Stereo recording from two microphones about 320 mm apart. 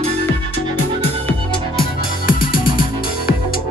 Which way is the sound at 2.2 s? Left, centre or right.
Left.